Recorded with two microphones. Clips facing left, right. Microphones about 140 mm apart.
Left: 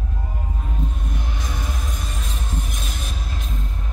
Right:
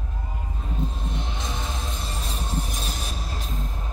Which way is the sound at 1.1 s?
25° right (ahead or behind).